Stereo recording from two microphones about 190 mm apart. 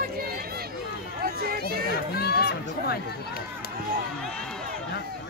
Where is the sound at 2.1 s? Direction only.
55° left (ahead or behind).